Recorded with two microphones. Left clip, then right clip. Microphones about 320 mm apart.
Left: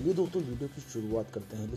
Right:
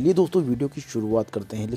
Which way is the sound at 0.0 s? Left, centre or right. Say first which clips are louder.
Right 10 dB; right.